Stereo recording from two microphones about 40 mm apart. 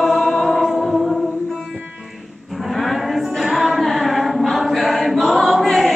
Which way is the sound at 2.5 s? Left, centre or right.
Centre.